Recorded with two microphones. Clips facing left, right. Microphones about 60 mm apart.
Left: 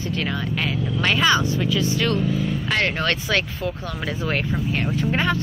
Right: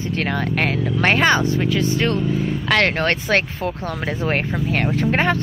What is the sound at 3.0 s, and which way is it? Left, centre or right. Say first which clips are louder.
Speech: right 3 dB; right.